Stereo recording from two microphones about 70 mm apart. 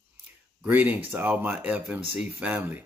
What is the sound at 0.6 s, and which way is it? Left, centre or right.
Speech, right.